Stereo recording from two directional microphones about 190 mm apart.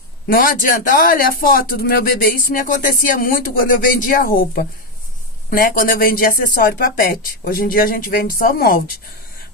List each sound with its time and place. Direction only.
0.3 s speech: 50° left (ahead or behind)